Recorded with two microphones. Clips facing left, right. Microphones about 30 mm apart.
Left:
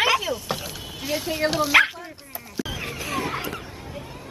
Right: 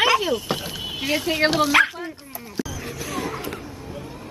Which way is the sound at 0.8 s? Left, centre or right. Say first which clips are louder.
Right 6 dB; right.